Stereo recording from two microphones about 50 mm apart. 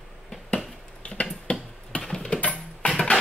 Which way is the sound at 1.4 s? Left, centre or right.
Left.